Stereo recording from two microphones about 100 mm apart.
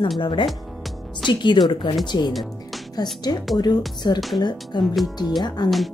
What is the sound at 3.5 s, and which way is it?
Speech, 40° left (ahead or behind).